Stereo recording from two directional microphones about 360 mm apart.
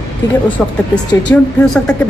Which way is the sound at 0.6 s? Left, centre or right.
Centre.